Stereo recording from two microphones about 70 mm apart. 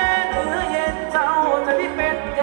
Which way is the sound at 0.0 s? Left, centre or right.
Centre.